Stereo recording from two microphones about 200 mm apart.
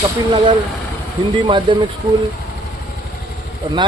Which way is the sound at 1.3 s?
25° right (ahead or behind).